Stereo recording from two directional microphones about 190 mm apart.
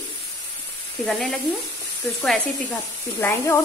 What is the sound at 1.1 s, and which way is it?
Speech, centre (ahead or behind).